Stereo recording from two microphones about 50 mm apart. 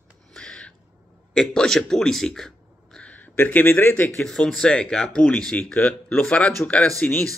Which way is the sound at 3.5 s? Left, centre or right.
Left.